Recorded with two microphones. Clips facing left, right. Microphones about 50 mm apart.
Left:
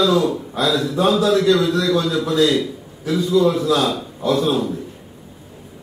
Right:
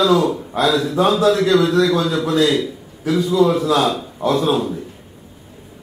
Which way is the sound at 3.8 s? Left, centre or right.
Right.